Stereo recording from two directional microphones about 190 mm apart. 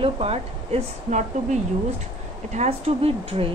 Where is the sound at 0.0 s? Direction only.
30° right (ahead or behind).